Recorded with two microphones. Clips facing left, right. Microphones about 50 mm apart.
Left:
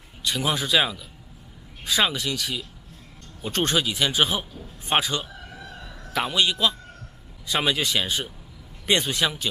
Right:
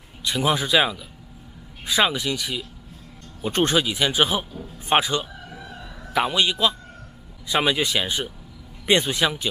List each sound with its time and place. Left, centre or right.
0.3 s a man's voice: centre
5.2 s crowing: centre
6.6 s a man's voice: centre